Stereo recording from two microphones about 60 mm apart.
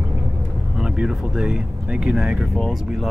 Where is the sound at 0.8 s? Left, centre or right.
Centre.